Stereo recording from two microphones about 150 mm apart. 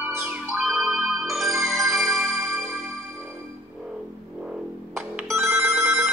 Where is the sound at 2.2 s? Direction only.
15° right (ahead or behind).